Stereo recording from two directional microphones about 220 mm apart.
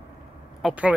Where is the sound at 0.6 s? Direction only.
5° right (ahead or behind).